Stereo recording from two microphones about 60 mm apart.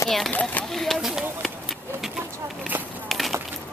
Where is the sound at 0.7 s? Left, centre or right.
Centre.